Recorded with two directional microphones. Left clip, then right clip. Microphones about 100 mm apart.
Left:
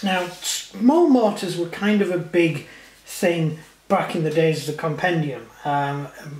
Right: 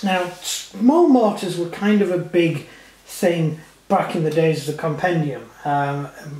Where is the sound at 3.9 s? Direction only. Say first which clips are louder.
Right 2 dB; 25° left (ahead or behind).